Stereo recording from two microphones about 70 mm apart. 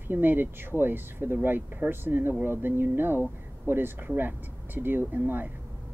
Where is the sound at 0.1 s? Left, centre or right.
Right.